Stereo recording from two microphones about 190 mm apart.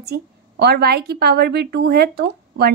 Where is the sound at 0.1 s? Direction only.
55° right (ahead or behind).